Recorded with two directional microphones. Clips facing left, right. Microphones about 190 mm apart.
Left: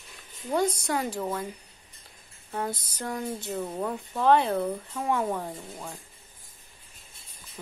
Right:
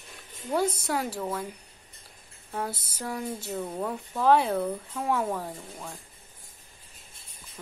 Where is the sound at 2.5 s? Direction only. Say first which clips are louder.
Left 1 dB; 5° right (ahead or behind).